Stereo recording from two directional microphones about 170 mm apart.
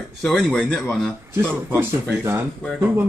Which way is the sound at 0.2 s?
5° left (ahead or behind).